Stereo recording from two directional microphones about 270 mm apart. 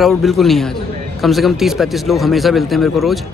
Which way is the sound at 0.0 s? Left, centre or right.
Centre.